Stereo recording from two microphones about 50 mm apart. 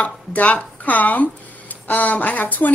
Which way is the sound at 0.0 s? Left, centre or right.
Left.